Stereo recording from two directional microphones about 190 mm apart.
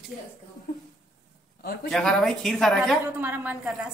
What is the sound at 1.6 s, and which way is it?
Speech, 55° left (ahead or behind).